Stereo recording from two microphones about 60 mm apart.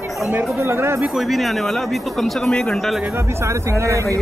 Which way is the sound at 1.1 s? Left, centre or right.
Centre.